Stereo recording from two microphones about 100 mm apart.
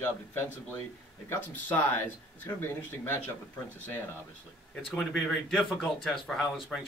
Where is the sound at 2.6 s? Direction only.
20° left (ahead or behind).